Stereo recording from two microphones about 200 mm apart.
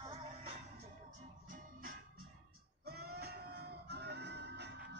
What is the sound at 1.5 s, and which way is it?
Music, 45° right (ahead or behind).